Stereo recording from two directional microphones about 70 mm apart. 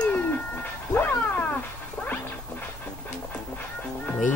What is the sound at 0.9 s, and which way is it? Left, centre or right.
Dog, left.